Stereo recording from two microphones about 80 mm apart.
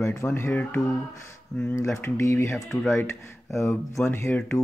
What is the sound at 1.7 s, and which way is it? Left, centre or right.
Speech, left.